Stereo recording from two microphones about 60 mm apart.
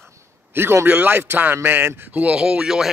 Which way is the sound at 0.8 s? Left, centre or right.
Right.